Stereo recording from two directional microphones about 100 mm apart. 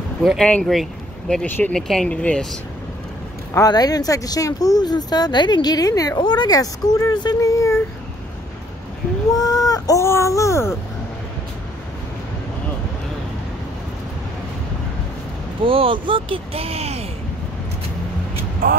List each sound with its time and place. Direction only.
0.4 s speech: 15° left (ahead or behind)
3.5 s speech: 40° left (ahead or behind)
9.3 s speech: 40° left (ahead or behind)
15.6 s speech: 65° right (ahead or behind); by 17.0 s 90° right